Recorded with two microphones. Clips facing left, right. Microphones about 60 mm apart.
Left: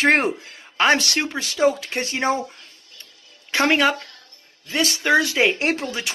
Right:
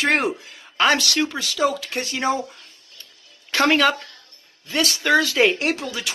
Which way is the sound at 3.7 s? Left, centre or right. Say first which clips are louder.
Even; centre.